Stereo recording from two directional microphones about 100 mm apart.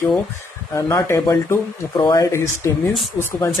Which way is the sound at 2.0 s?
40° left (ahead or behind).